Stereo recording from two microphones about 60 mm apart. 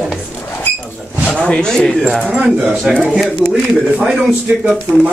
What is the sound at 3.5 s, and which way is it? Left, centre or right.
A man's voice, right.